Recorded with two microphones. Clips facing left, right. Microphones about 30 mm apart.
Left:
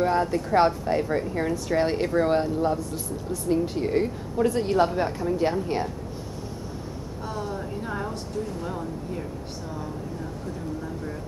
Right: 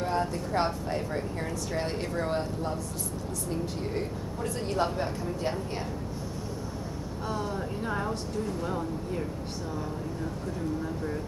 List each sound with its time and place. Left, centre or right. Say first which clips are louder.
0.0 s speech: left 6 dB; left
3.8 s speech: left 8 dB; left
7.2 s speech: left 1 dB; centre